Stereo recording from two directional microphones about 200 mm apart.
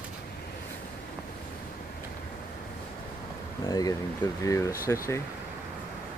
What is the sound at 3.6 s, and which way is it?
Speech, 20° left (ahead or behind).